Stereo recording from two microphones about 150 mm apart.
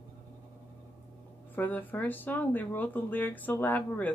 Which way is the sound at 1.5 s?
10° left (ahead or behind).